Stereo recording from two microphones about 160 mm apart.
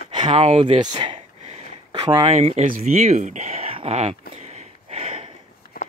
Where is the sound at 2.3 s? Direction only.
45° right (ahead or behind).